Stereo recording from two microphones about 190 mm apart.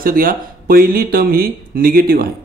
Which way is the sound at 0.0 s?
50° right (ahead or behind).